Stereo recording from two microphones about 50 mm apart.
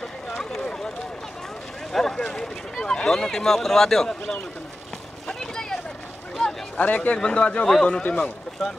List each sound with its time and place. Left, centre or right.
0.3 s a sound: centre
6.4 s speech: left
8.0 s speech: left